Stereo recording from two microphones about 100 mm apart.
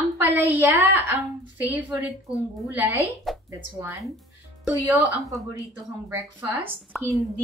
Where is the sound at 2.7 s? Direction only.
20° right (ahead or behind).